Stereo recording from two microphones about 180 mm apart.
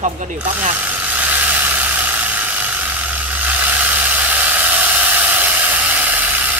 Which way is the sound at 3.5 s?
10° right (ahead or behind).